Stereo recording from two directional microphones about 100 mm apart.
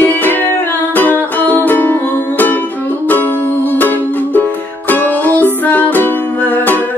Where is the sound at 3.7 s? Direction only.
20° left (ahead or behind).